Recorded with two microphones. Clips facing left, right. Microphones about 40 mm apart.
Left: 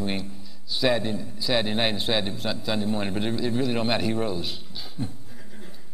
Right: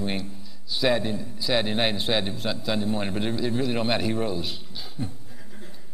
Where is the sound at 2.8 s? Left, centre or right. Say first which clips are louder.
Even; right.